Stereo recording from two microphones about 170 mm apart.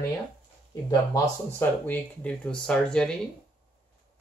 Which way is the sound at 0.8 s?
25° left (ahead or behind).